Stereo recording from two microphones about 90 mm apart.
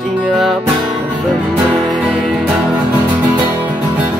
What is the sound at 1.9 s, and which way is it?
Music, centre (ahead or behind).